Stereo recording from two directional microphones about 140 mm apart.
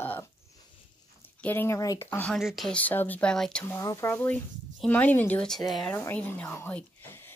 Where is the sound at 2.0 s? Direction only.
10° left (ahead or behind).